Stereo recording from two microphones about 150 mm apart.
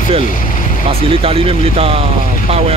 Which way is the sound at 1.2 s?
40° right (ahead or behind).